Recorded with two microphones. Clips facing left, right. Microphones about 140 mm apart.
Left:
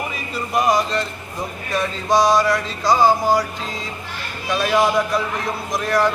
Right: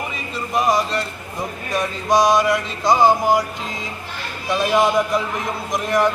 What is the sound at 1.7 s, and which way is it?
A man's voice, 15° right (ahead or behind).